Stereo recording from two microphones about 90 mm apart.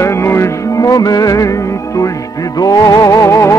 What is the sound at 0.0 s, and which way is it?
Music, 30° left (ahead or behind).